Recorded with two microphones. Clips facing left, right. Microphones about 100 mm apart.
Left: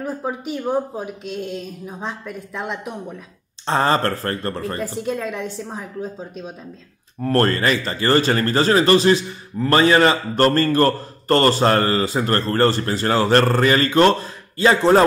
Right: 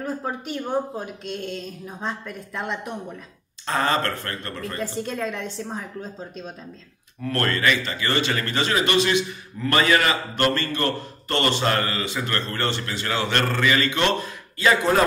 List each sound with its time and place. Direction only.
0.0 s speech: 5° left (ahead or behind)
3.6 s speech: 30° left (ahead or behind)
4.8 s speech: 5° left (ahead or behind)
7.2 s speech: 35° left (ahead or behind)